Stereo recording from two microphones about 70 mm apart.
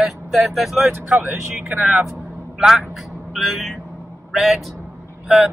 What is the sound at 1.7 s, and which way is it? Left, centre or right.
Speech, right.